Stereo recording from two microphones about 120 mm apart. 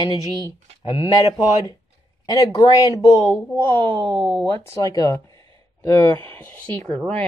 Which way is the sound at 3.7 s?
45° right (ahead or behind).